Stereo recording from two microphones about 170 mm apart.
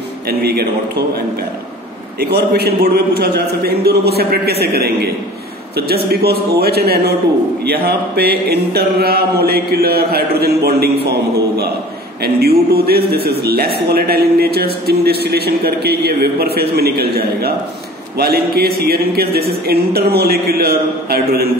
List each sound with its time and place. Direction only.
0.3 s a man's voice: 70° right (ahead or behind)
2.1 s a man's voice: 70° right (ahead or behind)